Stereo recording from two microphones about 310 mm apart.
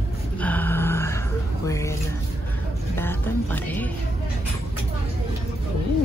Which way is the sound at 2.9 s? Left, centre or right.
Centre.